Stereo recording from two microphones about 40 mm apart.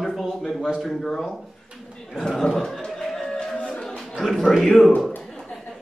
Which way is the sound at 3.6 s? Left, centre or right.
Left.